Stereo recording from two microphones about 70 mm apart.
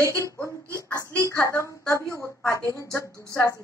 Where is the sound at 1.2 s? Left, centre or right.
Left.